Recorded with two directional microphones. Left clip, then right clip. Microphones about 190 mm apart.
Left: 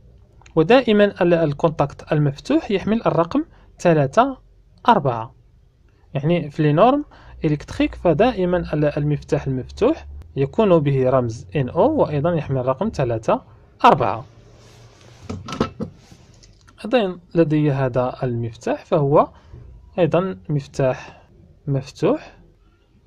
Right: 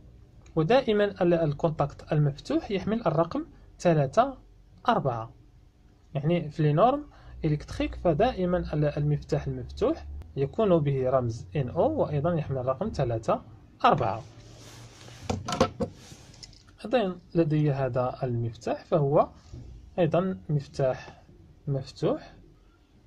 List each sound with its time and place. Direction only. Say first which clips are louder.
0.4 s speech: left 9 dB; 25° left (ahead or behind)
16.7 s speech: left 7 dB; 25° left (ahead or behind)